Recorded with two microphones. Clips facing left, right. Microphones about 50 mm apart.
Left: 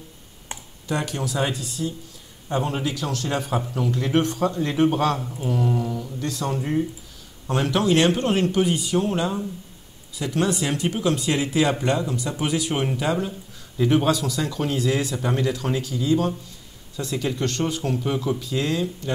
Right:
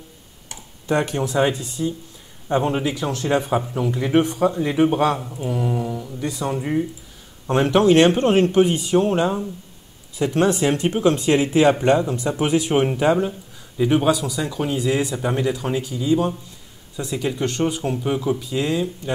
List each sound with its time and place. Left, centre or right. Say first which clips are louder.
0.8 s speech: right 5 dB; right; by 6.9 s centre
7.4 s speech: right 6 dB; right
13.3 s speech: right 2 dB; centre